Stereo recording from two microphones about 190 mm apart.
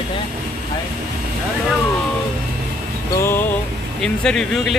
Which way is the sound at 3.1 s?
15° left (ahead or behind).